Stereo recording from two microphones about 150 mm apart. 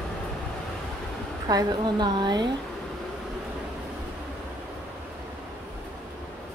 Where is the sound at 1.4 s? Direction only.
25° right (ahead or behind).